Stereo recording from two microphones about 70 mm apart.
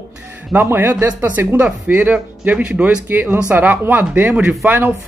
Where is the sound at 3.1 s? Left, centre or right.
Right.